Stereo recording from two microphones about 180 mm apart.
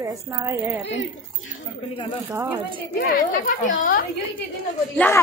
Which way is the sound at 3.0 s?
50° left (ahead or behind).